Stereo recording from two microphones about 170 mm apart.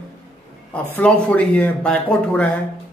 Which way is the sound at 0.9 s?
5° left (ahead or behind).